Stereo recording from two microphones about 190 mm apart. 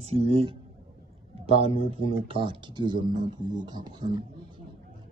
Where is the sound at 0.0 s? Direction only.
30° right (ahead or behind).